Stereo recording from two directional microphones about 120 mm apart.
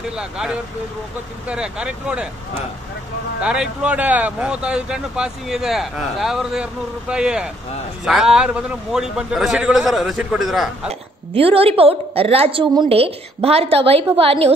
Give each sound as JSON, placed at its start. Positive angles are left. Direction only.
{"t": 0.1, "sound": "speech", "side_deg": -5}
{"t": 3.3, "sound": "a man's voice", "side_deg": -10}
{"t": 10.9, "sound": "a woman's voice", "side_deg": -55}